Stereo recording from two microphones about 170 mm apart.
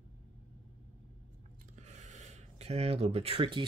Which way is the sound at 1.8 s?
45° right (ahead or behind).